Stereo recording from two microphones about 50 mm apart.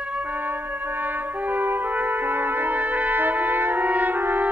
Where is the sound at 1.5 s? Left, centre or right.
Right.